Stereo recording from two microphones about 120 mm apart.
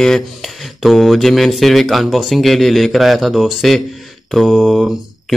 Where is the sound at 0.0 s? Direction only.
Centre (ahead or behind).